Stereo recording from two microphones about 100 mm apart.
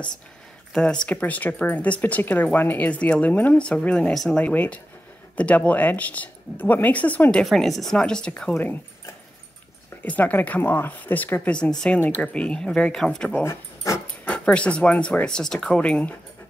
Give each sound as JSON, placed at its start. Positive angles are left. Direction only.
{"t": 0.7, "sound": "speech", "side_deg": 10}
{"t": 7.4, "sound": "a woman's voice", "side_deg": 0}
{"t": 10.0, "sound": "speech", "side_deg": 15}
{"t": 13.4, "sound": "speech", "side_deg": 25}
{"t": 14.2, "sound": "speech", "side_deg": 10}